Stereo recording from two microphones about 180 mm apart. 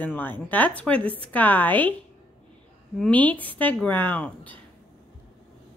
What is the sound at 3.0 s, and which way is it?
A woman's voice, 5° left (ahead or behind).